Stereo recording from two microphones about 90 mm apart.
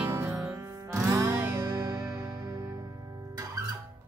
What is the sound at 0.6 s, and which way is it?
Music, 35° right (ahead or behind).